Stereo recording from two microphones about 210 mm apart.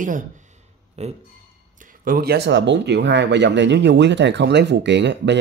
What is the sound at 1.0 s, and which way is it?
Speech, 30° right (ahead or behind).